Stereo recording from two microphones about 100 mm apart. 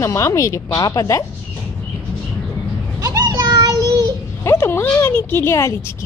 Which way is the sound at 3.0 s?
40° right (ahead or behind).